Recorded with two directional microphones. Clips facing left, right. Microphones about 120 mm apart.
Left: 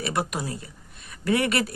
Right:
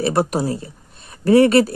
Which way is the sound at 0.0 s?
35° right (ahead or behind).